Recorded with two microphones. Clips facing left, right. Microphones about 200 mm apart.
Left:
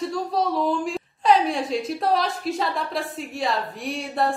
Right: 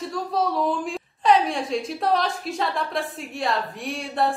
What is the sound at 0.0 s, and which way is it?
A woman's voice, centre (ahead or behind).